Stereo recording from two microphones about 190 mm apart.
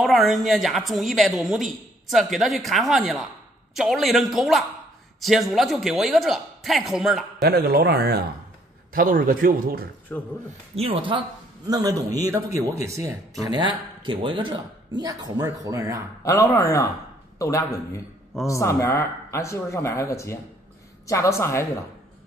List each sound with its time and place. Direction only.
0.0 s a woman's voice: centre (ahead or behind)
7.4 s speech: 55° right (ahead or behind)
10.1 s speech: 5° left (ahead or behind)
10.8 s speech: 25° right (ahead or behind)
16.3 s speech: 15° left (ahead or behind)